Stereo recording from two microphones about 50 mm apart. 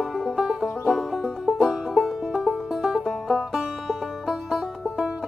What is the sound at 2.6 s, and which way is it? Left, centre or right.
Music, centre.